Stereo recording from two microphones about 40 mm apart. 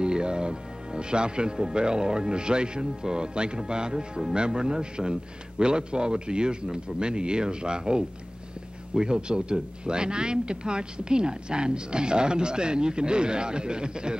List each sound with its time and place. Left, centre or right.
0.0 s speech: right